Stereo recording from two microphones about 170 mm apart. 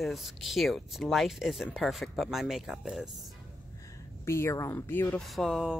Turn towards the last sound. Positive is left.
turn(degrees=-5)  # may be behind; listen again after turning